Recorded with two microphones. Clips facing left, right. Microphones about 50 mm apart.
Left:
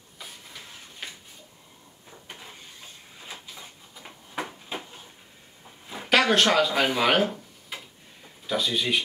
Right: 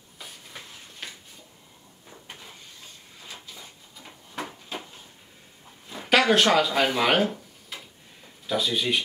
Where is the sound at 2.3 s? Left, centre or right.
Centre.